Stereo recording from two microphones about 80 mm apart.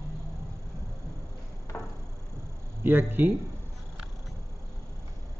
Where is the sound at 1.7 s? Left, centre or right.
Left.